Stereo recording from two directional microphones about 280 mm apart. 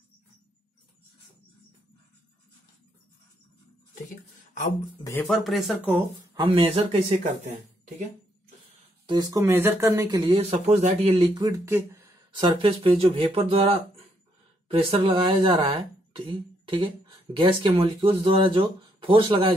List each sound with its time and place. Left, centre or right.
4.6 s speech: left
5.0 s speech: centre
6.4 s speech: centre
9.0 s speech: centre